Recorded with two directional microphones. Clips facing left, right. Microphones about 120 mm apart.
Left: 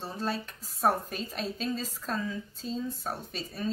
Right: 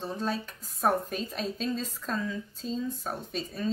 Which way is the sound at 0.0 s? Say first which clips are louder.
Right 2 dB; centre (ahead or behind).